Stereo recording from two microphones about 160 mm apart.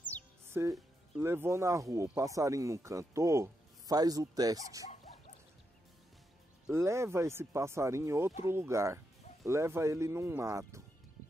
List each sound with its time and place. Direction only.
0.5 s speech: 15° right (ahead or behind)
6.7 s speech: 15° right (ahead or behind)